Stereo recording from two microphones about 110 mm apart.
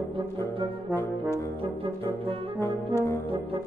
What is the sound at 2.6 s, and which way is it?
Brass instrument, 25° left (ahead or behind).